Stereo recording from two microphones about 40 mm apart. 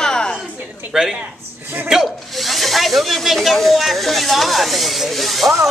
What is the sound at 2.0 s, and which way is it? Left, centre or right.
Speech, centre.